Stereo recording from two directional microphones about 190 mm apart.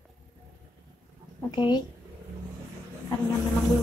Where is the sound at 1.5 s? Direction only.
25° left (ahead or behind).